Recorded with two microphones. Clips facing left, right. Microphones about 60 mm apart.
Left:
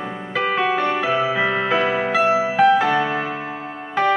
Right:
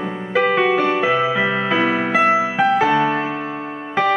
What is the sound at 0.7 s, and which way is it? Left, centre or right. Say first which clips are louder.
Music: right 3 dB; centre.